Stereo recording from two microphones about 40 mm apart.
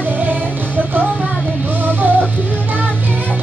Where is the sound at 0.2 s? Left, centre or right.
Right.